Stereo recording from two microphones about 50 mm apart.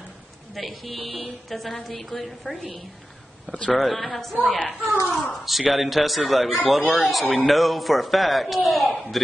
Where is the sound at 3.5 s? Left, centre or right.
Left.